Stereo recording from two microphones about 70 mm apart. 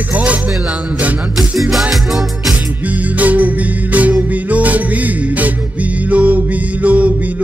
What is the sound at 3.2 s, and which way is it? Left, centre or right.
Music, right.